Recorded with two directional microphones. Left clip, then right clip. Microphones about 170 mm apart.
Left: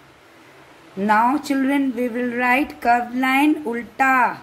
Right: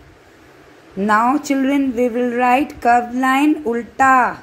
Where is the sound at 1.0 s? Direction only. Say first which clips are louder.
Right 2 dB; 15° right (ahead or behind).